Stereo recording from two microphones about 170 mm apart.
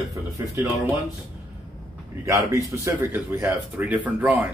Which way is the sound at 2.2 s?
15° right (ahead or behind).